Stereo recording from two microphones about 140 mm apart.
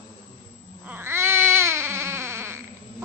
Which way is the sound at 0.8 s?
15° right (ahead or behind).